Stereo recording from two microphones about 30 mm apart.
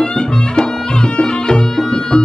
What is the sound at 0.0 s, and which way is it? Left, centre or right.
Music, left.